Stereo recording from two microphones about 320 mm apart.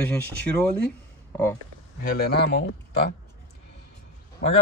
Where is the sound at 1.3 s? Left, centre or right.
Centre.